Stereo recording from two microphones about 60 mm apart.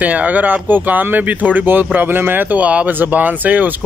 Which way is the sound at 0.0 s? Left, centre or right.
Right.